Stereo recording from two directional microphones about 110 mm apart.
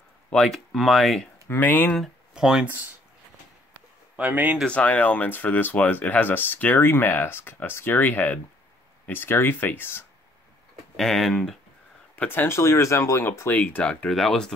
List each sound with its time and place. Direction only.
0.3 s speech: 5° left (ahead or behind)
1.5 s speech: 15° left (ahead or behind)
2.0 s speech: 5° right (ahead or behind)
4.2 s speech: 15° right (ahead or behind)
4.6 s speech: 10° left (ahead or behind)
11.0 s speech: centre (ahead or behind)
12.2 s speech: 20° left (ahead or behind)